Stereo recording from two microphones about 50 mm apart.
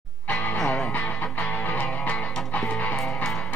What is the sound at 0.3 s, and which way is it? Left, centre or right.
Music, centre.